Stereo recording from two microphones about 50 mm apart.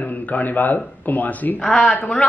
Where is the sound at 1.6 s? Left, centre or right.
Centre.